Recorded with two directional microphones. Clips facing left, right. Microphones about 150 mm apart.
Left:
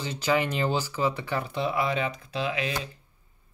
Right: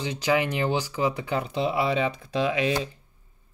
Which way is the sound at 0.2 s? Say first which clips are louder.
Right 1 dB; 10° right (ahead or behind).